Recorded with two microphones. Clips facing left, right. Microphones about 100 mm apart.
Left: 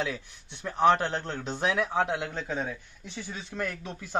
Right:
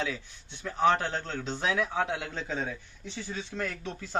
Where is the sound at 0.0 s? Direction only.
15° left (ahead or behind).